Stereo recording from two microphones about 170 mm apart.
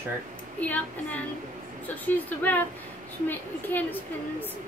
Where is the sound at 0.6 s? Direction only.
10° left (ahead or behind).